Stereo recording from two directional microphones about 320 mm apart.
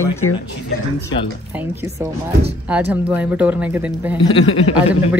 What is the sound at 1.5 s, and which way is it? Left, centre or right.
A woman's voice, centre.